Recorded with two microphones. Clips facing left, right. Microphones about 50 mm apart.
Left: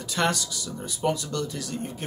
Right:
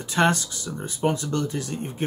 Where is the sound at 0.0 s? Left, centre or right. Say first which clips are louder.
Right 4 dB; right.